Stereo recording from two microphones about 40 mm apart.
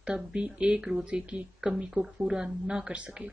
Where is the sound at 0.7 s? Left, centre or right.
Centre.